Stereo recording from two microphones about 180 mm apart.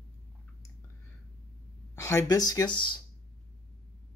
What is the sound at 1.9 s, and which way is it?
Speech, 15° left (ahead or behind).